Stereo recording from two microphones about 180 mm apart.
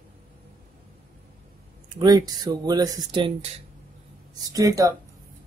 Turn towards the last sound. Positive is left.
turn(degrees=-20)  # may be behind; listen again after turning